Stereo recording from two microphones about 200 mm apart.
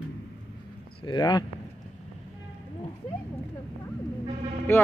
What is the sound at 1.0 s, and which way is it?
Speech, 20° left (ahead or behind).